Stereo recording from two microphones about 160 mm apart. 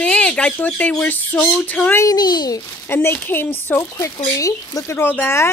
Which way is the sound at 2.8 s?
15° left (ahead or behind).